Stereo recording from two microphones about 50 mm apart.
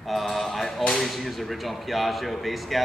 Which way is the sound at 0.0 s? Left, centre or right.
Centre.